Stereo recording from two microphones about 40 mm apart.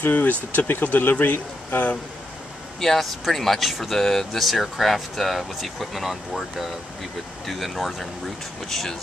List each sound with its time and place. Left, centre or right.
0.0 s speech: left
2.8 s speech: centre